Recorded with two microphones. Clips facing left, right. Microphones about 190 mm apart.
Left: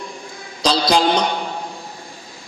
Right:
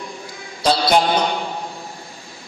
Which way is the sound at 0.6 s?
90° left.